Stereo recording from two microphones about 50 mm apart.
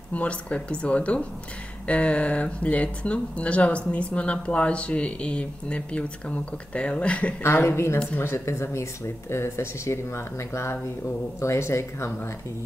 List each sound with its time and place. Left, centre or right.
0.1 s speech: left
7.4 s speech: left